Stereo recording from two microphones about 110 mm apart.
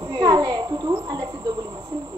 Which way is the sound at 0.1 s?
40° right (ahead or behind).